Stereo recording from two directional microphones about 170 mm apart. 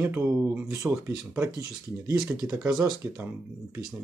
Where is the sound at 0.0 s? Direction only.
10° right (ahead or behind).